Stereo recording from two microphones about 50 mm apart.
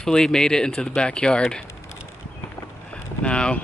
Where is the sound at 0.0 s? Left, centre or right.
Centre.